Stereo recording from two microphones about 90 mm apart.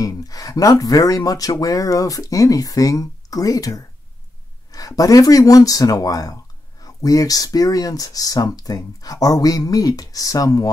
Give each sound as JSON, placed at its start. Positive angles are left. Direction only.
{"t": 0.0, "sound": "speech", "side_deg": 40}